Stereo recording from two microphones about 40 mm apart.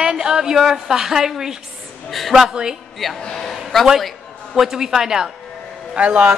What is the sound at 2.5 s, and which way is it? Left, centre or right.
Speech, centre.